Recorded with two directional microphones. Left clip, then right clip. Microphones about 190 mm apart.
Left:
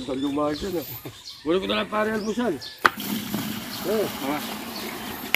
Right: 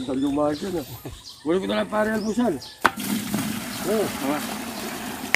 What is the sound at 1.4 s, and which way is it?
Speech, 45° right (ahead or behind).